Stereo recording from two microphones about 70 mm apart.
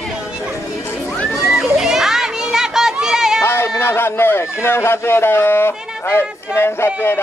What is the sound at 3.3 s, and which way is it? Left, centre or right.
Speech, left.